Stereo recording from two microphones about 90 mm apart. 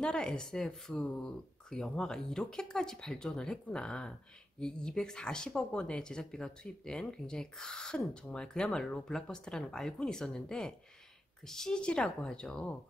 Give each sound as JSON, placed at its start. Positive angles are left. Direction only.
{"t": 0.0, "sound": "speech", "side_deg": 10}